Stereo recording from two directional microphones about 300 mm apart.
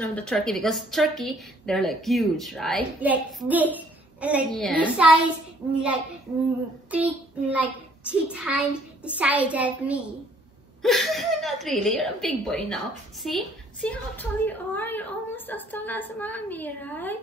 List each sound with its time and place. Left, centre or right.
0.0 s a woman's voice: centre
6.9 s a woman's voice: centre